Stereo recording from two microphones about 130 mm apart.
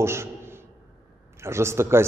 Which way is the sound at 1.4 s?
20° right (ahead or behind).